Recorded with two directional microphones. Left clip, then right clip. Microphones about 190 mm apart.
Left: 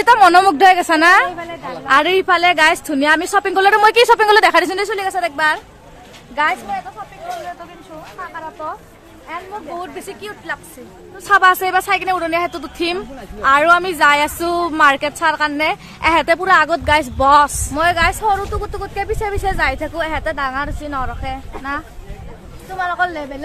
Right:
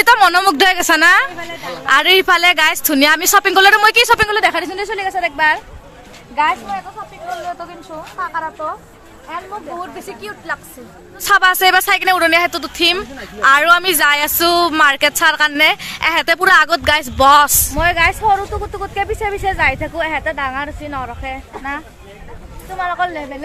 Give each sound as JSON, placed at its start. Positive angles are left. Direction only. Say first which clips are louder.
{"t": 0.0, "sound": "a woman's voice", "louder": "left 1 dB", "side_deg": -5}
{"t": 3.9, "sound": "speech", "louder": "even", "side_deg": 10}
{"t": 4.3, "sound": "a woman's voice", "louder": "left 4 dB", "side_deg": 45}
{"t": 5.3, "sound": "speech", "louder": "right 2 dB", "side_deg": 15}
{"t": 8.2, "sound": "speech", "louder": "right 7 dB", "side_deg": -20}
{"t": 9.8, "sound": "speech", "louder": "right 1 dB", "side_deg": 10}
{"t": 13.4, "sound": "speech", "louder": "right 2 dB", "side_deg": -5}
{"t": 17.7, "sound": "speech", "louder": "even", "side_deg": 20}
{"t": 18.7, "sound": "speech", "louder": "right 2 dB", "side_deg": 0}